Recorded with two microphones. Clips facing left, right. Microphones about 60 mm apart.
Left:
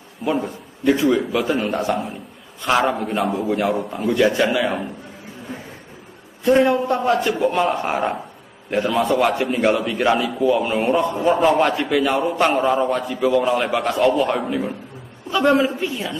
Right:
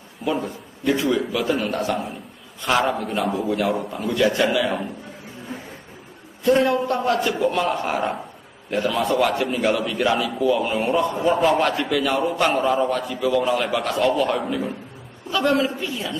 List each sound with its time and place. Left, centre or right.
0.9 s a man's voice: left
2.7 s a man's voice: centre
3.4 s a man's voice: centre
3.7 s a man's voice: centre
4.1 s a man's voice: left
6.4 s a man's voice: left
9.5 s a man's voice: centre
14.4 s a man's voice: centre
15.3 s a man's voice: left